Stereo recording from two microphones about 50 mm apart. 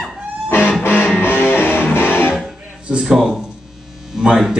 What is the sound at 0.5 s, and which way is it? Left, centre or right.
Music, left.